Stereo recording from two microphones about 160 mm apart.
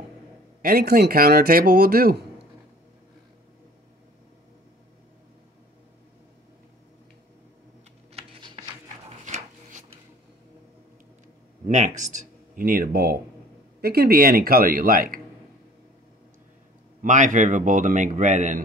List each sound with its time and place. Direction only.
0.6 s speech: 70° right (ahead or behind)
8.1 s typing: 35° right (ahead or behind)
9.2 s rub: 50° right (ahead or behind)
11.6 s speech: 50° right (ahead or behind)
17.0 s a man's voice: 50° right (ahead or behind)